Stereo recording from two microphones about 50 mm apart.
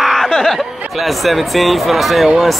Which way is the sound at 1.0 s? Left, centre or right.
Centre.